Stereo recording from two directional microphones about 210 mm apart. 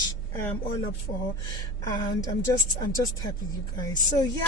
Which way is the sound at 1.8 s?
20° left (ahead or behind).